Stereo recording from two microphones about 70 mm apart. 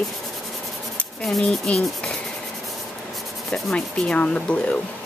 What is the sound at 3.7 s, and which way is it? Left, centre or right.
Speech, centre.